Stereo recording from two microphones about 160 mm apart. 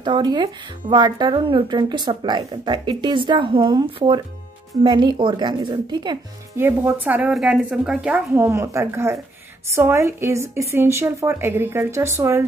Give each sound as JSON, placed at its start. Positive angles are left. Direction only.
{"t": 0.0, "sound": "speech", "side_deg": -25}
{"t": 6.5, "sound": "a woman's voice", "side_deg": -15}